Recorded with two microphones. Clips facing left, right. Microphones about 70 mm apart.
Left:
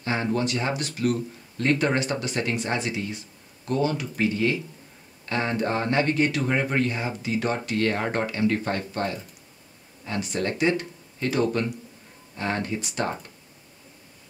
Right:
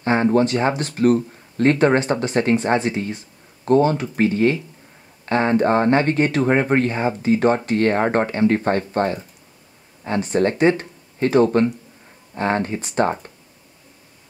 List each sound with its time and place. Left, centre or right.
0.0 s speech: right